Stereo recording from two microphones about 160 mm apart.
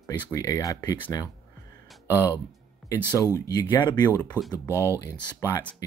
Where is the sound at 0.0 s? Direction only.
20° left (ahead or behind).